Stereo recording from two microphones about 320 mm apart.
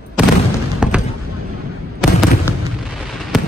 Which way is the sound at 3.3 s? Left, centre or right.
Centre.